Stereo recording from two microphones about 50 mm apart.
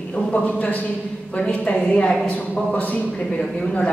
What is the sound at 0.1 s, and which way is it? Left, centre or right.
A woman's voice, left.